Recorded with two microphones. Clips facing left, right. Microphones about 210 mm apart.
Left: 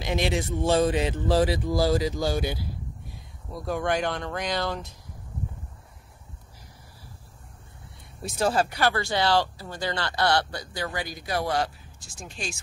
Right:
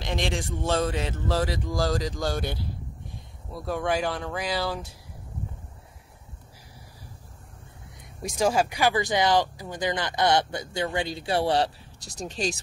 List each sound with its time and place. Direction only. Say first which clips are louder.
0.0 s speech: left 3 dB; 5° left (ahead or behind)
8.2 s speech: right 1 dB; 10° right (ahead or behind); by 12.5 s 35° right (ahead or behind)